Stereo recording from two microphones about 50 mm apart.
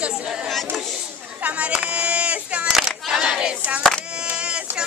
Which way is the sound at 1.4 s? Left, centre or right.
Right.